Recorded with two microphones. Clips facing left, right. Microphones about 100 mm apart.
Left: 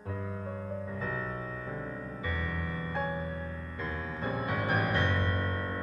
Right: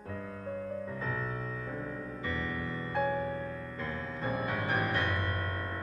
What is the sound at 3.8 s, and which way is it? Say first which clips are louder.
Music: left 2 dB; 20° left (ahead or behind).